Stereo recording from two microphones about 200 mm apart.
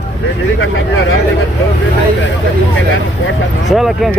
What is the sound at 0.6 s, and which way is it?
Speech, 75° left (ahead or behind).